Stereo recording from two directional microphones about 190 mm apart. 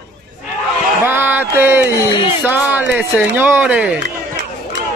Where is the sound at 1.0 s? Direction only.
10° right (ahead or behind).